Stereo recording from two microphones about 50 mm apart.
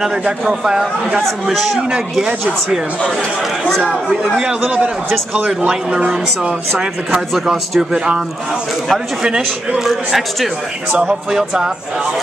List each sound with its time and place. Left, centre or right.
0.2 s speech: centre
1.9 s speech: centre
3.0 s speech: centre
3.8 s speech: centre
4.6 s a man's voice: right
5.7 s speech: centre
7.3 s speech: centre
7.9 s speech: centre
9.8 s speech: centre
10.9 s speech: right